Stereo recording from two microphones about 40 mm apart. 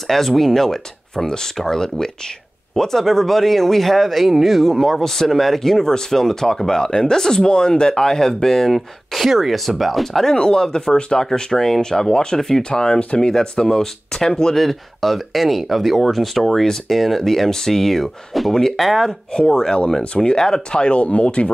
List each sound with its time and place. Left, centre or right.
0.0 s speech: centre
5.0 s speech: centre
10.3 s speech: left
11.3 s speech: centre
18.8 s speech: centre
19.3 s speech: left